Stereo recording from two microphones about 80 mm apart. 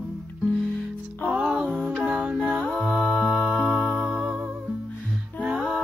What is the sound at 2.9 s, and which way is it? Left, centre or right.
Music, centre.